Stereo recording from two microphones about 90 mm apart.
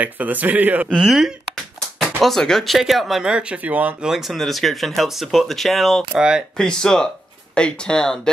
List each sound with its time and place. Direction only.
0.0 s speech: 20° right (ahead or behind)
4.1 s speech: 5° right (ahead or behind)